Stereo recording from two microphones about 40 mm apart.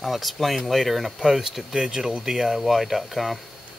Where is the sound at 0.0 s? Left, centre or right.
Centre.